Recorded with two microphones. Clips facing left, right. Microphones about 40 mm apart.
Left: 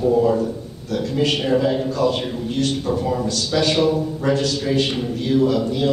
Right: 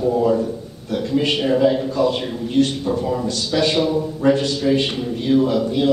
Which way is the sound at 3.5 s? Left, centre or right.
Right.